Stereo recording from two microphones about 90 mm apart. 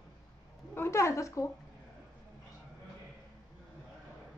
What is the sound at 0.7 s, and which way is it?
Speech, 30° left (ahead or behind).